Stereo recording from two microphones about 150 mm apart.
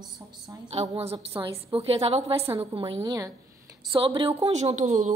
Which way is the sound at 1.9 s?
40° right (ahead or behind).